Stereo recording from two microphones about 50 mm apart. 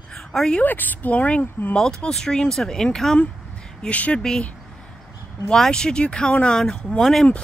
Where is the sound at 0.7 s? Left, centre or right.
Left.